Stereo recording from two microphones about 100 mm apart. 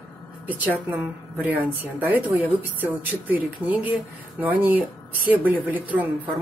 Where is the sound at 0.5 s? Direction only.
15° right (ahead or behind).